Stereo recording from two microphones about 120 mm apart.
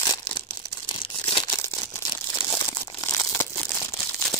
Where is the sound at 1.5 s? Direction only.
20° left (ahead or behind).